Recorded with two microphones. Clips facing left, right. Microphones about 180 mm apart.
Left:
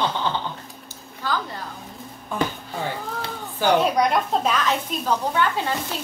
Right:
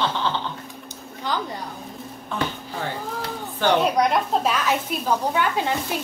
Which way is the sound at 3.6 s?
Centre (ahead or behind).